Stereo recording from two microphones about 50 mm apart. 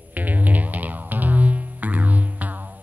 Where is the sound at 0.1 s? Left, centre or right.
Right.